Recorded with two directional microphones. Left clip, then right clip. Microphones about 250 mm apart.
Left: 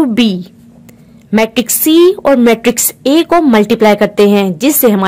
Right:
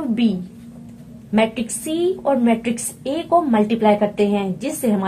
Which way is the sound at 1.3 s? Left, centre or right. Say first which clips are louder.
Left 7 dB; left.